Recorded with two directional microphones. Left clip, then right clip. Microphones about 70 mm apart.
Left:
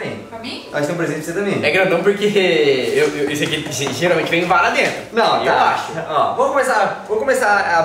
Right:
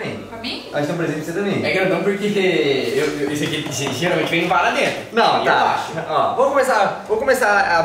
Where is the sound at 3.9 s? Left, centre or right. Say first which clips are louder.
Left 3 dB; left.